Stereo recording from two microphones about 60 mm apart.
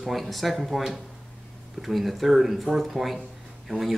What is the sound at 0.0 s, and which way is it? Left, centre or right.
Speech, centre.